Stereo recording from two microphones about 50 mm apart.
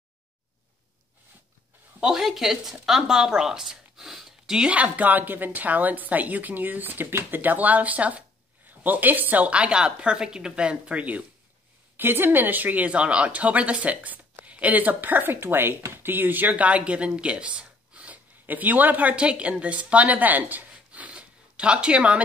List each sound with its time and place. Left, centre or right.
2.0 s speech: centre
4.6 s a woman's voice: right
12.0 s a woman's voice: right